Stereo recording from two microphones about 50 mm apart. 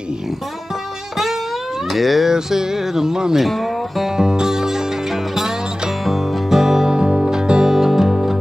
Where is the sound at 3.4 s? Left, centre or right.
Centre.